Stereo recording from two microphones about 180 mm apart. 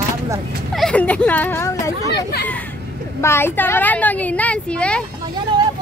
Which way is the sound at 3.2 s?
15° left (ahead or behind).